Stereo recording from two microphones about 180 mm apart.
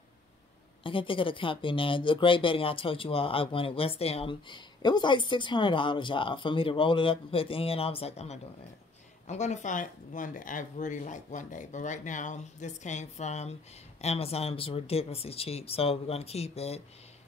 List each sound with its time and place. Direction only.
0.8 s speech: 30° left (ahead or behind)